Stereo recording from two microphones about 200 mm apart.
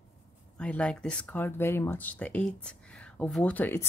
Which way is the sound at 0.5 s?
5° left (ahead or behind).